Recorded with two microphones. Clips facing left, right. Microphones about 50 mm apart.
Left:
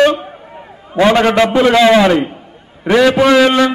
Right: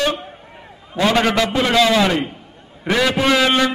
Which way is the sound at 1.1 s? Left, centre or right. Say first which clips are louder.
Left 6 dB; left.